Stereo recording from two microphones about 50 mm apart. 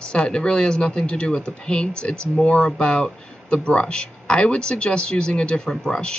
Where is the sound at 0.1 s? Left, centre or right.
Centre.